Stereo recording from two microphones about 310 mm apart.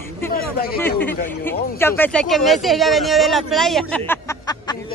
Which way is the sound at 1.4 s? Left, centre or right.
Centre.